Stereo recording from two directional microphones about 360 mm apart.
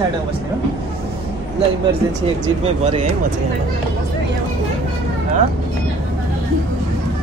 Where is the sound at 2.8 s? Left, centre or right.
Centre.